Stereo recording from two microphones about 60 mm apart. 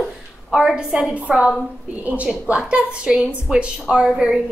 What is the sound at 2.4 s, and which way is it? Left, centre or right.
A woman's voice, centre.